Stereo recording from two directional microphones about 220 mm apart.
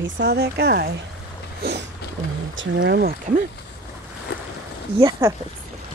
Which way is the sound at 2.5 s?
55° right (ahead or behind).